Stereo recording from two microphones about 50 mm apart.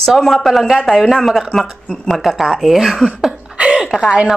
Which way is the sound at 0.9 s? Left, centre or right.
Centre.